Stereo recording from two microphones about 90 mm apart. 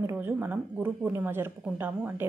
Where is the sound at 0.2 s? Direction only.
20° right (ahead or behind).